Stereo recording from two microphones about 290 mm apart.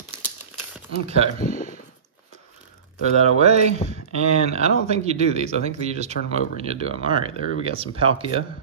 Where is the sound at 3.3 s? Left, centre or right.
Right.